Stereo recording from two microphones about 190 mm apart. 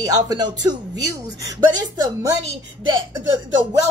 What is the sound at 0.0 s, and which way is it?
A woman's voice, 20° right (ahead or behind).